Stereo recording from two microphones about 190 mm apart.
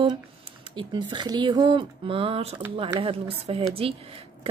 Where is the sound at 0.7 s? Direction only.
25° right (ahead or behind).